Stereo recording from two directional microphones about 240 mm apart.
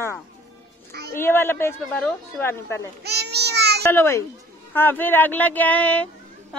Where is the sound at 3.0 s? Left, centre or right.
Right.